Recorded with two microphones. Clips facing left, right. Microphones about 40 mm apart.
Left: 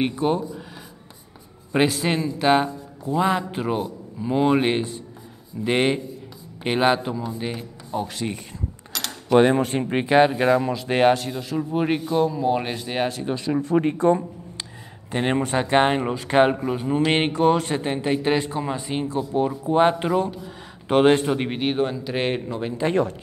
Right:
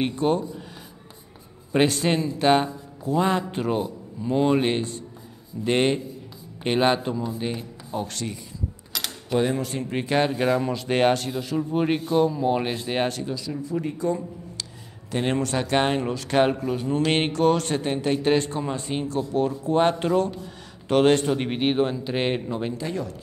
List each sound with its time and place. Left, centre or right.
0.0 s speech: centre
1.7 s speech: centre
9.3 s speech: left; by 13.2 s centre
13.3 s speech: left
15.0 s speech: centre
21.5 s speech: centre
22.8 s speech: left